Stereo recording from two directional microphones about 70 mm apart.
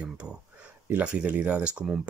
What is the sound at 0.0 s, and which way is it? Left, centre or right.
Speech, centre.